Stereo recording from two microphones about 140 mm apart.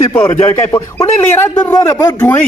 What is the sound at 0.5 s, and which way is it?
A man's voice, 20° left (ahead or behind).